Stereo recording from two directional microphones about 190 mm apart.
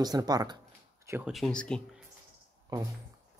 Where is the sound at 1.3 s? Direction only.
5° left (ahead or behind).